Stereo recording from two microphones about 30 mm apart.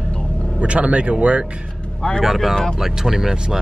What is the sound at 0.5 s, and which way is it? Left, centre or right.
Speech, right.